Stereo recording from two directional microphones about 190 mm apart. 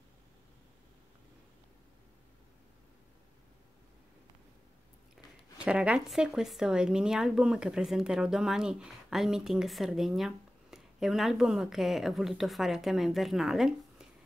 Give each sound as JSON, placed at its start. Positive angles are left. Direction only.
{"t": 5.1, "sound": "speech", "side_deg": -5}